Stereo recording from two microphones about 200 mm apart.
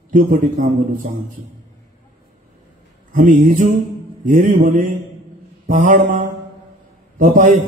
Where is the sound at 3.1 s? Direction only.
40° right (ahead or behind).